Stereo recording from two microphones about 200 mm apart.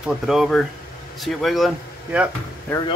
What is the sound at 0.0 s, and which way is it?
Speech, centre (ahead or behind).